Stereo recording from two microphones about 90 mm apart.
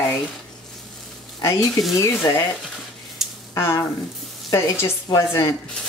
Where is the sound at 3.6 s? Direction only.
30° left (ahead or behind).